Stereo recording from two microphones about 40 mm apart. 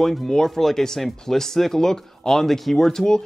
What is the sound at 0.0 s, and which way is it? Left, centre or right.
Speech, centre.